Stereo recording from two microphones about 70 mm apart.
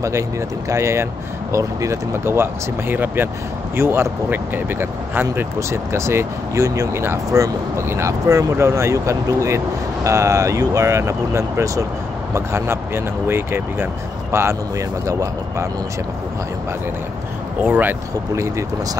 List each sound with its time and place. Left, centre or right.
0.7 s speech: right
2.2 s speech: right
5.6 s speech: right
12.4 s speech: right
17.6 s speech: right